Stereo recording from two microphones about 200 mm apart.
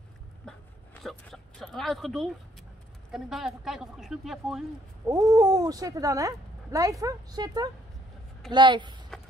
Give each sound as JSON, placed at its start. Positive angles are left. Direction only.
{"t": 1.0, "sound": "speech", "side_deg": 0}
{"t": 5.0, "sound": "speech", "side_deg": -15}